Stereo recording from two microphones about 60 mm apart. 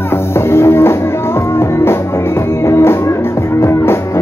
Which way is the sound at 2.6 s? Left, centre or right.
Left.